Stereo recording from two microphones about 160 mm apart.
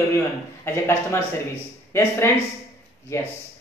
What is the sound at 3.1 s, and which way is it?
Speech, 15° left (ahead or behind).